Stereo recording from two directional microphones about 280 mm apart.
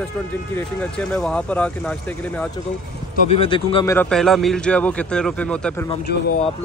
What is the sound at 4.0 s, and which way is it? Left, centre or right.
A man's voice, centre.